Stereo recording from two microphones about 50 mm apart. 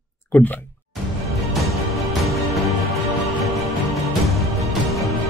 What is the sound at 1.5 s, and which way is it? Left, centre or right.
Music, centre.